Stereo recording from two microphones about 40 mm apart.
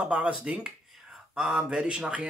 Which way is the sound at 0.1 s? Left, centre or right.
Right.